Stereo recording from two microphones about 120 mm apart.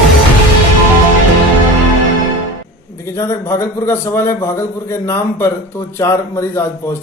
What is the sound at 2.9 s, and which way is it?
A man's voice, 25° left (ahead or behind).